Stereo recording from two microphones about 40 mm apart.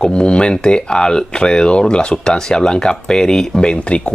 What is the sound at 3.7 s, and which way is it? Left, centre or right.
Speech, left.